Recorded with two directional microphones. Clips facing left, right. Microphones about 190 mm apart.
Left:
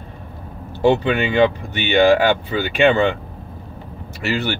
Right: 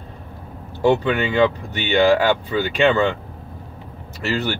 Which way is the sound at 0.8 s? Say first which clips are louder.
Left 1 dB; 20° left (ahead or behind).